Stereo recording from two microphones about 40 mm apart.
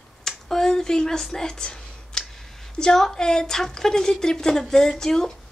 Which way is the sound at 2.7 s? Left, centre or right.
Centre.